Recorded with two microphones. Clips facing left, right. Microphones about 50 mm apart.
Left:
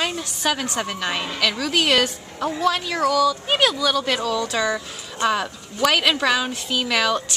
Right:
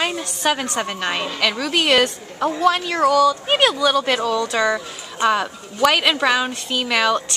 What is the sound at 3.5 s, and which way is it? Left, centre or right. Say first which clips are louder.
A woman's voice: right 3 dB; centre.